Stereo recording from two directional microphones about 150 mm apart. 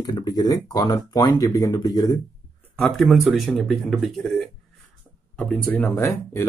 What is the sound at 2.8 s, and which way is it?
Speech, centre (ahead or behind).